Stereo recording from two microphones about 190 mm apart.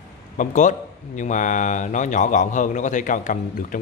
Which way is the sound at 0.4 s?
40° left (ahead or behind).